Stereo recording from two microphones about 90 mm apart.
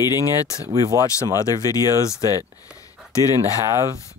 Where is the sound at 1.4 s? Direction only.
40° left (ahead or behind).